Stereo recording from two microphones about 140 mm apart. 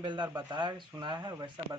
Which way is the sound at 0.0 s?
35° right (ahead or behind).